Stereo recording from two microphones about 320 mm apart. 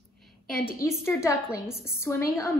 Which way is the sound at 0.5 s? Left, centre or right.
Left.